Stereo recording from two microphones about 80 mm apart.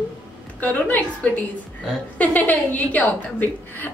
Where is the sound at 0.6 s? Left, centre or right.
Left.